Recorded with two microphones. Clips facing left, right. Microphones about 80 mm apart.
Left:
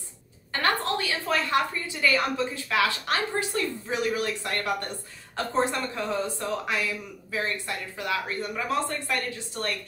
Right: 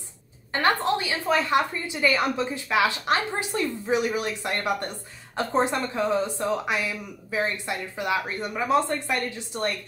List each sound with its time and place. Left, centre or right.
0.5 s speech: right